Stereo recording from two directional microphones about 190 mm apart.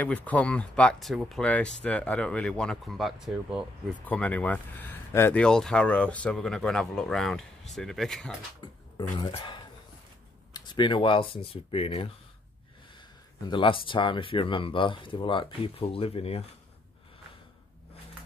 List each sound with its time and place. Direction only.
0.0 s speech: 10° left (ahead or behind)
4.0 s speech: 10° left (ahead or behind)
8.9 s speech: 20° left (ahead or behind)
13.5 s speech: 25° left (ahead or behind)